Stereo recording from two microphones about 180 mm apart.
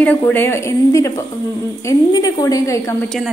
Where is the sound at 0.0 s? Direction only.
10° left (ahead or behind).